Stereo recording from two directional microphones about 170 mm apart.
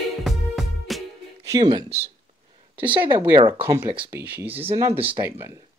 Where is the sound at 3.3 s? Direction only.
30° right (ahead or behind).